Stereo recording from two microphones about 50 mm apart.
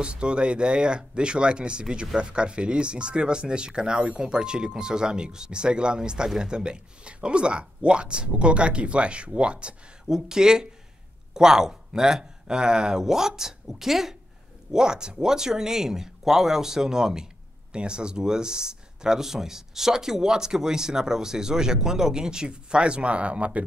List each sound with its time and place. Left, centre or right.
0.0 s speech: centre